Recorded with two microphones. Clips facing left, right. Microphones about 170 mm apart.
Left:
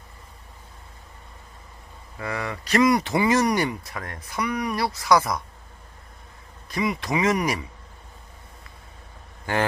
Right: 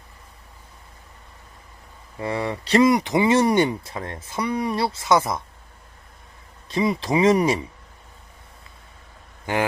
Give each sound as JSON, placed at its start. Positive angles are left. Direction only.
{"t": 2.1, "sound": "speech", "side_deg": -25}
{"t": 6.7, "sound": "speech", "side_deg": -30}
{"t": 9.5, "sound": "speech", "side_deg": -20}